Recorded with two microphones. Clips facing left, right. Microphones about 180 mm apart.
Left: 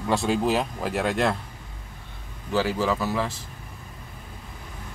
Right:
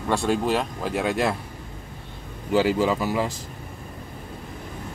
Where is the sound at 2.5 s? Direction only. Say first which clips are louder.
Right 4 dB; 15° right (ahead or behind).